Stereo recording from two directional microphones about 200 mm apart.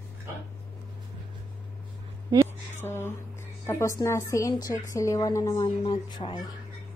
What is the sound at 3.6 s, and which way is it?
A woman's voice, 15° left (ahead or behind).